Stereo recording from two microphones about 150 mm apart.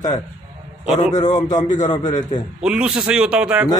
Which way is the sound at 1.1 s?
50° left (ahead or behind).